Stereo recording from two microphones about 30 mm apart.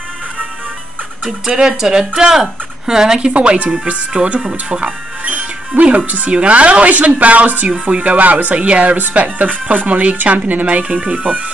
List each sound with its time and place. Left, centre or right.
1.9 s speech: right
3.3 s speech: right
4.4 s speech: right
4.8 s music: right
5.8 s speech: right
9.1 s speech: right